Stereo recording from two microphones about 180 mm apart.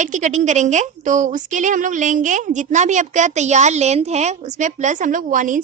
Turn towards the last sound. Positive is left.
turn(degrees=-45)  # may be behind; listen again after turning